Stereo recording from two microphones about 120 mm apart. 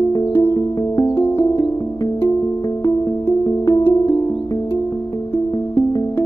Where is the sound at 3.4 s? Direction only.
30° left (ahead or behind).